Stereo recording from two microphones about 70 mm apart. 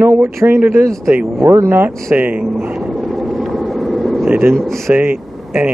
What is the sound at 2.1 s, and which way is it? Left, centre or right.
Speech, right.